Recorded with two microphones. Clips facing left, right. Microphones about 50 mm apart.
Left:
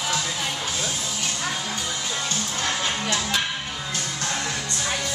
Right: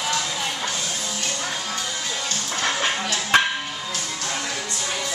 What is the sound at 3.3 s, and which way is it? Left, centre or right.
Music, right.